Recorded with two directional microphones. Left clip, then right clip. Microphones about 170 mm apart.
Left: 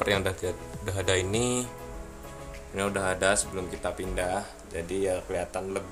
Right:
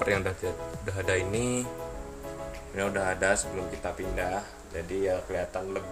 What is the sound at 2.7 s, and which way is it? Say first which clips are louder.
Speech: left 1 dB; 15° left (ahead or behind).